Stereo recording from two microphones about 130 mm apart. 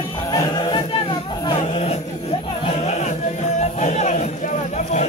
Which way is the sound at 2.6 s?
60° left (ahead or behind).